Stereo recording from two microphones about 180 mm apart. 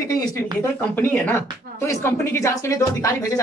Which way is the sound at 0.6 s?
10° left (ahead or behind).